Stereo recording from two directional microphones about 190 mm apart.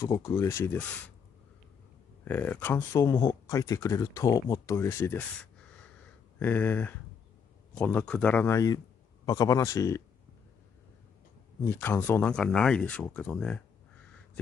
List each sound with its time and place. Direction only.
0.0 s speech: 15° left (ahead or behind)
2.2 s a man's voice: 10° left (ahead or behind)
11.6 s speech: 10° left (ahead or behind)